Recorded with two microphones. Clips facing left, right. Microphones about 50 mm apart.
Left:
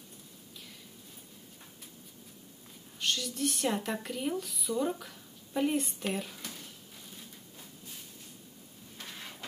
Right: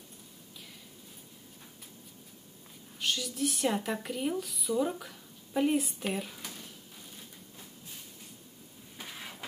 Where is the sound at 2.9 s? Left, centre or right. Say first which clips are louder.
Even; centre.